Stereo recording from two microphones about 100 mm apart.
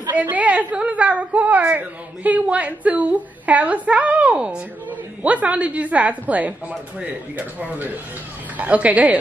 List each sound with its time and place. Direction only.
0.1 s a woman's voice: 15° right (ahead or behind)